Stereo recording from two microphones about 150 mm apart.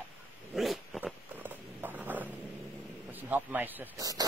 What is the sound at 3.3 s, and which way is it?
Speech, 10° right (ahead or behind).